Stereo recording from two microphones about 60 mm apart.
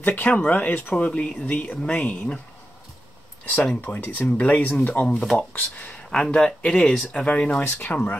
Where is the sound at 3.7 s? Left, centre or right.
Left.